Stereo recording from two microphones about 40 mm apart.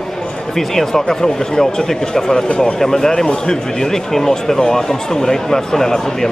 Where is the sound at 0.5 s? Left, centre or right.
Centre.